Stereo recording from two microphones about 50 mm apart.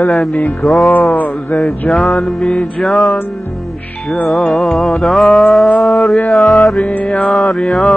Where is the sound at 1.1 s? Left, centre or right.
Left.